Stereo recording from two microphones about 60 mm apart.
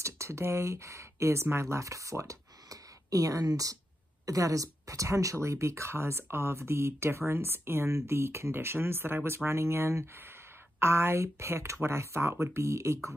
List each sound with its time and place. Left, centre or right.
0.0 s speech: right